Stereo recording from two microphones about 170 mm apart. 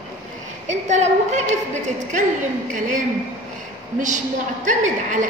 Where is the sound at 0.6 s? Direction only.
45° right (ahead or behind).